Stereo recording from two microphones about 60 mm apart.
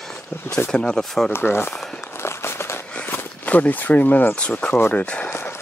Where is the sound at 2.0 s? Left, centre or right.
Left.